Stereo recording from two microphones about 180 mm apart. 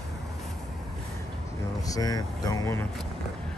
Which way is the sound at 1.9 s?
20° left (ahead or behind).